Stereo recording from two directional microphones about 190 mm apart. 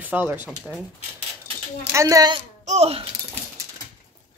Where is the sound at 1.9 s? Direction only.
15° right (ahead or behind).